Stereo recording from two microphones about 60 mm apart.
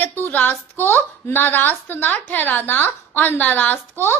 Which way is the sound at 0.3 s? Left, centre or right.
Left.